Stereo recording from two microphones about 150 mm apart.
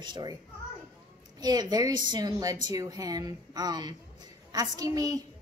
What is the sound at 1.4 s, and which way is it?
A woman's voice, 25° right (ahead or behind).